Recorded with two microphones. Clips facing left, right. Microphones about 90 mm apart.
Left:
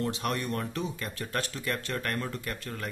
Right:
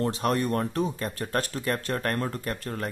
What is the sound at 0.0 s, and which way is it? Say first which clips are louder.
Speech: right 5 dB; 35° right (ahead or behind).